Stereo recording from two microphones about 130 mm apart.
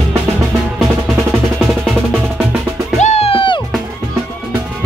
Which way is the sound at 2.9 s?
55° left (ahead or behind).